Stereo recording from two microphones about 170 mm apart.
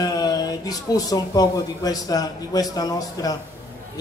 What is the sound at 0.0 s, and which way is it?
A man's voice, 20° left (ahead or behind).